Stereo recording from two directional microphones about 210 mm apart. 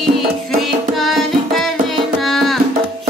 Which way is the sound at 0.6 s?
Centre (ahead or behind).